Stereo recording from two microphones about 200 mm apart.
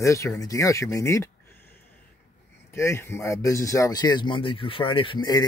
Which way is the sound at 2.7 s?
15° left (ahead or behind).